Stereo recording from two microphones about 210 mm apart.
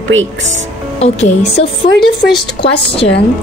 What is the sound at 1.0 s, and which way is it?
Speech, 30° left (ahead or behind).